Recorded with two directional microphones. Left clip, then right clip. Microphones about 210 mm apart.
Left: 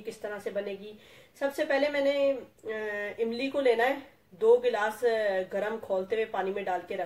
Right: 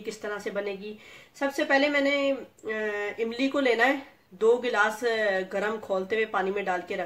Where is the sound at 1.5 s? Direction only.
45° right (ahead or behind).